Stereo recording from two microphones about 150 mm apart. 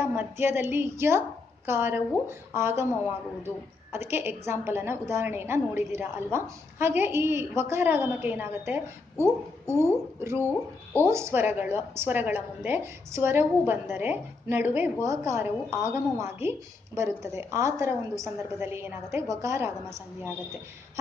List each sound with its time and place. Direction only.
0.1 s a woman's voice: 10° right (ahead or behind)
3.9 s a woman's voice: 15° right (ahead or behind)